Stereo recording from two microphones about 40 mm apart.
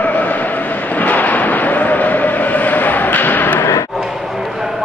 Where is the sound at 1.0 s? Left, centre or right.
Left.